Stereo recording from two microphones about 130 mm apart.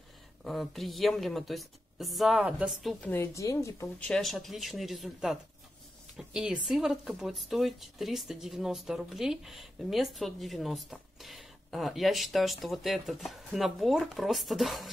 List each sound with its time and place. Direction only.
0.4 s speech: centre (ahead or behind)
3.1 s speech: 20° left (ahead or behind)
4.0 s speech: 5° left (ahead or behind)